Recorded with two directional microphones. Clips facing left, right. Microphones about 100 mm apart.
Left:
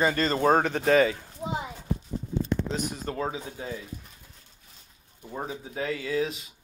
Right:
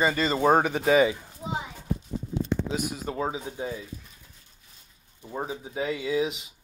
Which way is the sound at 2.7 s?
5° right (ahead or behind).